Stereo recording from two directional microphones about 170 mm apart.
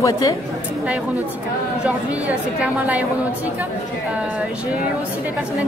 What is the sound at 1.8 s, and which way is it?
A woman's voice, 5° right (ahead or behind).